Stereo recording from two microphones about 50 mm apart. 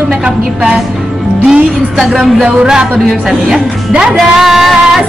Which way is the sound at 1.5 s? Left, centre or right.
Centre.